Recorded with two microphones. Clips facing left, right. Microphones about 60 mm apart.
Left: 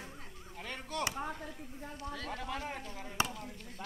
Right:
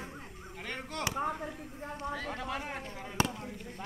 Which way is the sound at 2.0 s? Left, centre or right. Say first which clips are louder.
Right 4 dB; right.